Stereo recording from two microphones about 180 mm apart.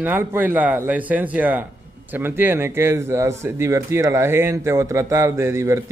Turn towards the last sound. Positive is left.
turn(degrees=-15)  # may be behind; listen again after turning